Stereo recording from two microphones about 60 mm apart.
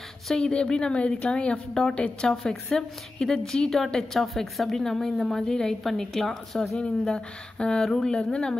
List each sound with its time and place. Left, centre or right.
0.3 s a woman's voice: centre
6.8 s speech: centre